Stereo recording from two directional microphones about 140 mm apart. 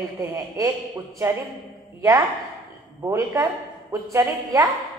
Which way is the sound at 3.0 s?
20° right (ahead or behind).